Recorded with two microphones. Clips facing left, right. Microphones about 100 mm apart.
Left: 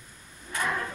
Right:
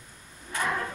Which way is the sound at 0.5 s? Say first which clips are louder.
Right 1 dB; 40° right (ahead or behind).